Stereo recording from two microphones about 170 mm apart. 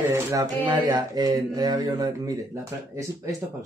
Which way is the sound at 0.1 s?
15° right (ahead or behind).